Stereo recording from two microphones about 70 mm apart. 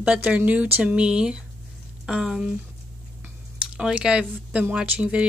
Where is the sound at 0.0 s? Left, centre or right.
Centre.